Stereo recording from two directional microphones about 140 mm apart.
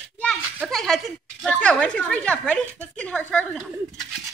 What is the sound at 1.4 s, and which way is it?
Speech, 10° left (ahead or behind).